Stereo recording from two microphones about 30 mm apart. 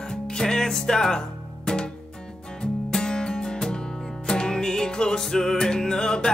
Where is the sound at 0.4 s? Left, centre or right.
Centre.